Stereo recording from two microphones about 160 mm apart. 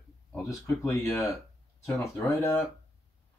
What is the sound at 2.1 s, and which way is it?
Speech, 15° left (ahead or behind).